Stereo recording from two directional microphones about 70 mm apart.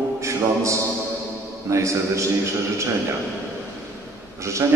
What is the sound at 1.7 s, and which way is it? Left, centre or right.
Speech, right.